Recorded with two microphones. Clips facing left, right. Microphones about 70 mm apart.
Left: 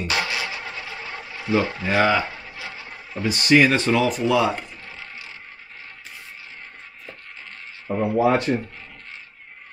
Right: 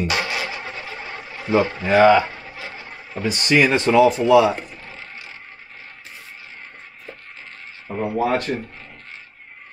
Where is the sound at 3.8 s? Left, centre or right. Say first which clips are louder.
Right 6 dB; centre.